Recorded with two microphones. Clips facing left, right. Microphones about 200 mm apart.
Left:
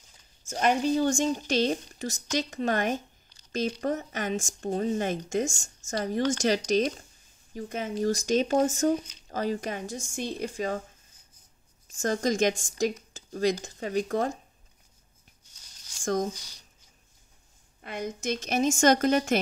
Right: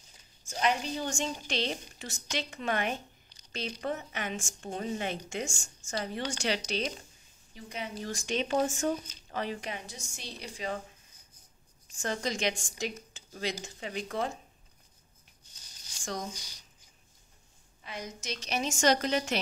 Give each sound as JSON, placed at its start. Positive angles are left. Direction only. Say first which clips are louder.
{"t": 0.5, "sound": "speech", "louder": "left 6 dB", "side_deg": 45}
{"t": 12.0, "sound": "speech", "louder": "left 7 dB", "side_deg": 45}
{"t": 16.0, "sound": "speech", "louder": "left 10 dB", "side_deg": 45}
{"t": 17.8, "sound": "speech", "louder": "left 8 dB", "side_deg": 55}